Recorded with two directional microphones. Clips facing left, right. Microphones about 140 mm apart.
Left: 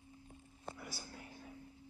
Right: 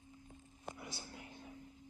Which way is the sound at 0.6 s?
20° right (ahead or behind).